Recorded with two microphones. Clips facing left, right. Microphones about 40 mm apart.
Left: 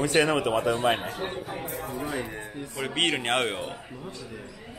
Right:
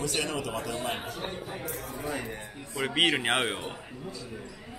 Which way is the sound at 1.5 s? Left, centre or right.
Left.